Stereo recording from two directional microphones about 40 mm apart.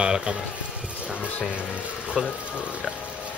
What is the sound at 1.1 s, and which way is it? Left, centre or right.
Speech, left.